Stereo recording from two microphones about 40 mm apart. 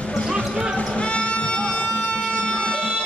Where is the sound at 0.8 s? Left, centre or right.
Left.